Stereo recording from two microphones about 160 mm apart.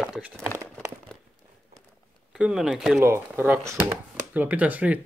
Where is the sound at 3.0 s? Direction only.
15° right (ahead or behind).